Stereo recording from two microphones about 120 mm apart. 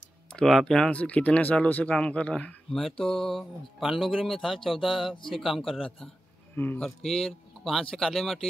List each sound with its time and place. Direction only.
0.4 s speech: 5° left (ahead or behind)
6.5 s speech: 15° left (ahead or behind)
6.8 s speech: 5° left (ahead or behind)